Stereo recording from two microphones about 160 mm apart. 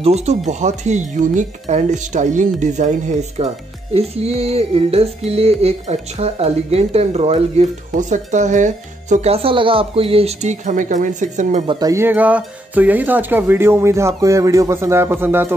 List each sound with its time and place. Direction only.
0.0 s speech: 45° right (ahead or behind)
11.8 s speech: 15° right (ahead or behind)